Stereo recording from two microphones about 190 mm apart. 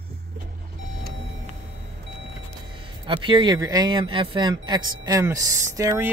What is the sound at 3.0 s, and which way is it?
Speech, 25° right (ahead or behind).